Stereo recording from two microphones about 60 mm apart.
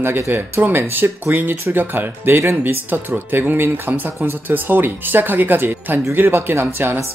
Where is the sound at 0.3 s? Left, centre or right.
Right.